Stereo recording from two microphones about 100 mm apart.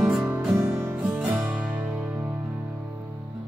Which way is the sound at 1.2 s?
10° right (ahead or behind).